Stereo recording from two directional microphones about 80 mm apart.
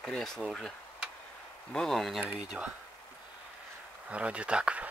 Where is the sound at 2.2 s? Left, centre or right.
Centre.